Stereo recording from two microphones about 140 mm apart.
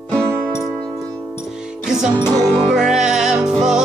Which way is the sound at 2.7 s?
5° right (ahead or behind).